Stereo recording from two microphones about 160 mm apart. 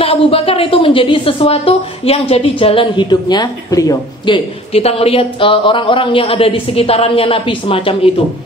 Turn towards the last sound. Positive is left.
turn(degrees=35)  # may be behind; listen again after turning